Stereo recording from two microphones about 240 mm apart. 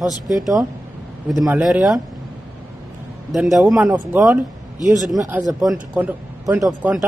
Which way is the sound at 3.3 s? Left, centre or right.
Centre.